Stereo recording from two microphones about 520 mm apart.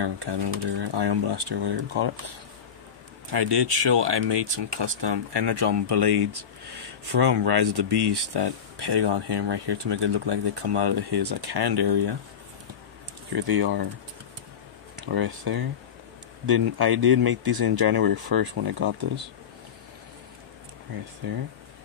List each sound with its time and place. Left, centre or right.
0.0 s speech: right
13.6 s speech: right
15.0 s speech: right